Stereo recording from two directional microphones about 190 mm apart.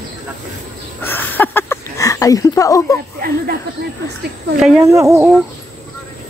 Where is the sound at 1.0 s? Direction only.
10° left (ahead or behind).